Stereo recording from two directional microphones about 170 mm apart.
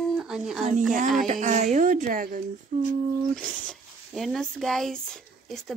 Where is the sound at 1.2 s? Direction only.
45° right (ahead or behind).